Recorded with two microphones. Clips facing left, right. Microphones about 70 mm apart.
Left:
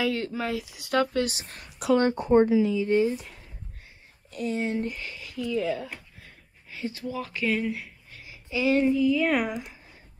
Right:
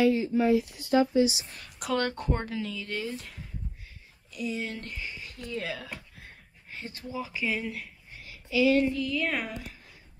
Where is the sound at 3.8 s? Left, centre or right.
Left.